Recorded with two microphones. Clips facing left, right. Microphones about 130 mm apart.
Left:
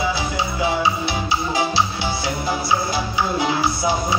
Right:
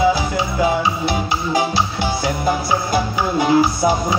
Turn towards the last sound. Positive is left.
turn(degrees=-45)  # may be behind; listen again after turning